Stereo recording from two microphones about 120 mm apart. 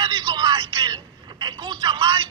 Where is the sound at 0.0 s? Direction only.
40° right (ahead or behind).